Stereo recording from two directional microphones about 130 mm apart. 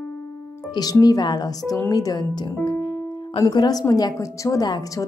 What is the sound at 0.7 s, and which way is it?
A woman's voice, 30° left (ahead or behind).